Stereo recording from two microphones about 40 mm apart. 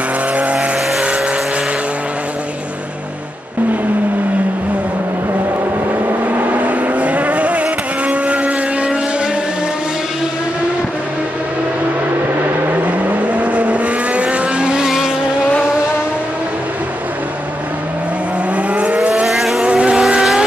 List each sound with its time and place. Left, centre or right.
0.4 s vehicle: right
6.3 s vehicle: right
12.8 s vehicle: right
18.7 s vehicle: right
19.2 s vehicle: centre
19.6 s vehicle: right